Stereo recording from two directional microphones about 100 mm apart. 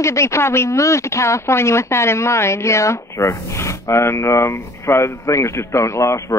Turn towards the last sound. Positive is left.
turn(degrees=30)  # may be behind; listen again after turning